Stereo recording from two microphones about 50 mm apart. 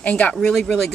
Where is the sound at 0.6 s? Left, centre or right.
Centre.